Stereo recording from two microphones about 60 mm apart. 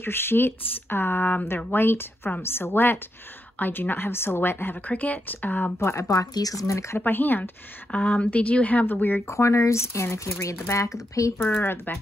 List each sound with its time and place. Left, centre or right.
0.0 s a woman's voice: left
5.8 s speech: left
7.1 s a woman's voice: left
7.9 s speech: centre
9.3 s speech: left
11.3 s a woman's voice: left